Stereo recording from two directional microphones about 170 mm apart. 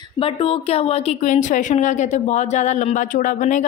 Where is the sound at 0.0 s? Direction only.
35° left (ahead or behind).